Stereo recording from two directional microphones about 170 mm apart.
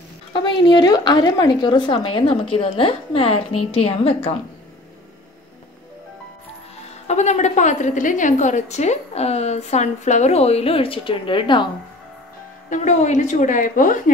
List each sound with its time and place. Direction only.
0.3 s a woman's voice: 25° left (ahead or behind)
7.1 s a woman's voice: 40° left (ahead or behind)
12.6 s a woman's voice: 45° left (ahead or behind)